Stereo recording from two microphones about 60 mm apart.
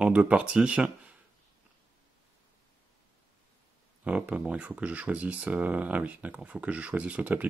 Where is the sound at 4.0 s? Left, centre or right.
Right.